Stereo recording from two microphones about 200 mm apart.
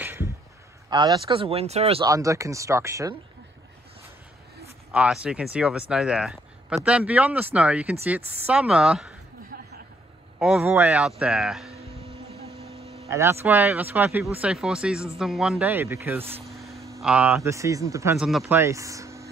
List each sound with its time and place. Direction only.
0.0 s a sound: 10° right (ahead or behind)
0.8 s speech: 20° right (ahead or behind)
2.0 s speech: 15° right (ahead or behind)
4.9 s speech: 5° right (ahead or behind)
9.5 s vehicle: 50° right (ahead or behind)
10.4 s speech: 5° right (ahead or behind)
12.4 s a sound: 30° right (ahead or behind)
13.1 s speech: 10° right (ahead or behind)
16.5 s a sound: centre (ahead or behind)
17.0 s speech: 5° right (ahead or behind)
18.1 s speech: 5° right (ahead or behind)
18.6 s a sound: 15° right (ahead or behind)